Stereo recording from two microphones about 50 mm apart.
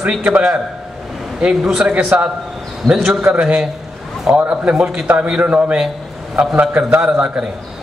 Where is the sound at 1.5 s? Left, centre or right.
Centre.